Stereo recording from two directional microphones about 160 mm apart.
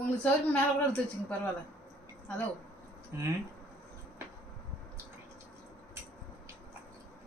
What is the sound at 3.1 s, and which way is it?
Speech, 15° right (ahead or behind).